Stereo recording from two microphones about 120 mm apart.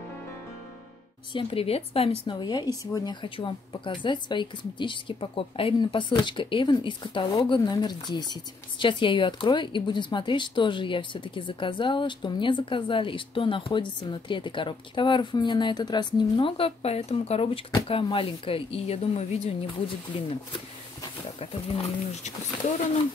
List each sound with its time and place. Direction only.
1.3 s speech: 50° left (ahead or behind)
2.3 s a woman's voice: 35° left (ahead or behind); by 19.5 s 65° left (ahead or behind)
21.4 s speech: 55° left (ahead or behind)